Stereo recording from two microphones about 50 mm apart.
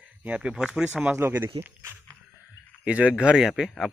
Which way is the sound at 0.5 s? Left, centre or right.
Centre.